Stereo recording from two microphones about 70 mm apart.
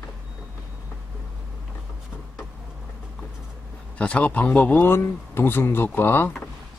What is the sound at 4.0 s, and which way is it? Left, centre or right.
Speech, centre.